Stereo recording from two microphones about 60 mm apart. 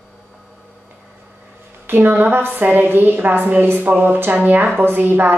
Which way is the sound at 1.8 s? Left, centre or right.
Right.